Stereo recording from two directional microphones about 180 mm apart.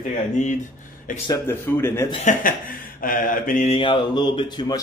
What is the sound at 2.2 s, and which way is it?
Speech, 50° left (ahead or behind).